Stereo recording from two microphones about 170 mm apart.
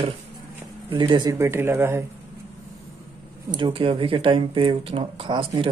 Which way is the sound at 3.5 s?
30° right (ahead or behind).